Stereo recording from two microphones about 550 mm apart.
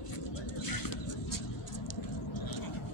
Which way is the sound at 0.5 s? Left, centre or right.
Left.